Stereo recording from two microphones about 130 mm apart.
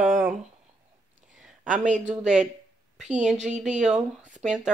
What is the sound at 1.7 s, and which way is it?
Speech, 70° right (ahead or behind).